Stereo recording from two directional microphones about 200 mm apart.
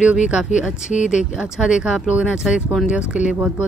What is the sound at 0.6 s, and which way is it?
Speech, 5° right (ahead or behind).